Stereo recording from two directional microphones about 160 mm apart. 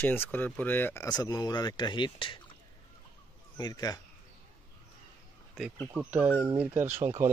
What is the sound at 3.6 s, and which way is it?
Speech, 25° left (ahead or behind).